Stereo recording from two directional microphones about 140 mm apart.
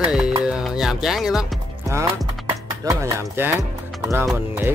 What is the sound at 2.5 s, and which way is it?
Speech, 20° right (ahead or behind).